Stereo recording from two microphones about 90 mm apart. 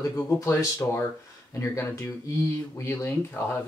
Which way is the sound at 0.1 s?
35° left (ahead or behind).